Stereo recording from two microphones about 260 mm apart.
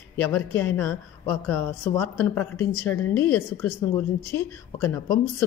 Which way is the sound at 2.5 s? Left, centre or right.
Left.